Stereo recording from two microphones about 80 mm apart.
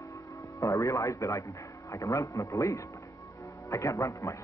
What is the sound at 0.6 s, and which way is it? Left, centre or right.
A man's voice, left.